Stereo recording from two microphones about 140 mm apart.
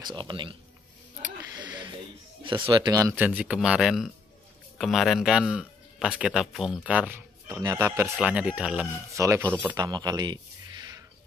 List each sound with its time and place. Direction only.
0.0 s speech: 30° right (ahead or behind)
1.6 s a sound: 35° right (ahead or behind)
2.4 s speech: 35° right (ahead or behind)
3.3 s speech: 5° right (ahead or behind)
9.1 s speech: 20° right (ahead or behind)
9.8 s a sound: 30° right (ahead or behind)